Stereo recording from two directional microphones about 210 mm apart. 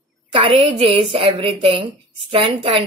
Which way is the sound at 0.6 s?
25° right (ahead or behind).